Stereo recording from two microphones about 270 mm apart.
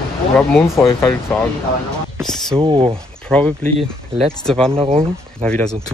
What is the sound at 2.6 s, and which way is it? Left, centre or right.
Speech, centre.